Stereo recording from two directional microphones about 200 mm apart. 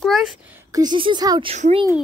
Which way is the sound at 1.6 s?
35° right (ahead or behind).